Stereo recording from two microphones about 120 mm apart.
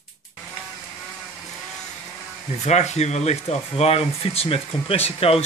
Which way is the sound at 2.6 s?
70° left (ahead or behind).